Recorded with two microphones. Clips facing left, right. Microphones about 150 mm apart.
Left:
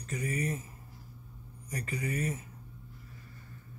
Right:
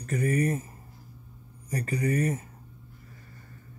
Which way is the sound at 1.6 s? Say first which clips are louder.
Right 8 dB; 35° right (ahead or behind).